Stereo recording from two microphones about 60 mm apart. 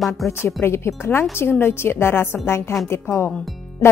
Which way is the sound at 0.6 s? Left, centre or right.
Left.